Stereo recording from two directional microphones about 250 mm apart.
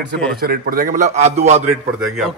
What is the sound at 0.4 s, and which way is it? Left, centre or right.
A man's voice, right.